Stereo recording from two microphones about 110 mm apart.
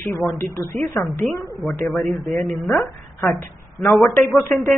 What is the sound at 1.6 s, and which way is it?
A woman's voice, centre (ahead or behind).